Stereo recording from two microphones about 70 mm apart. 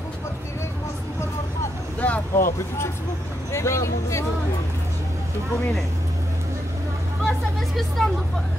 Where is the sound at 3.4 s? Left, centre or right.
Left.